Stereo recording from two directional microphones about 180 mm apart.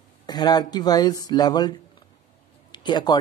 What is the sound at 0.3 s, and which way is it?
Speech, 20° left (ahead or behind).